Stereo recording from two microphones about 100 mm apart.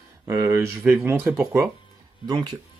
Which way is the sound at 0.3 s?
30° right (ahead or behind).